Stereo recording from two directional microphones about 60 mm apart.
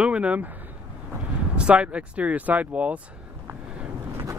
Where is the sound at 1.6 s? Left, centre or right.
Centre.